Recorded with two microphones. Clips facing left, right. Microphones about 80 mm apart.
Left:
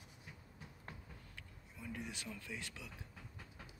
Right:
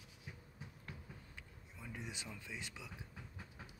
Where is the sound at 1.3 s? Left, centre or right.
Centre.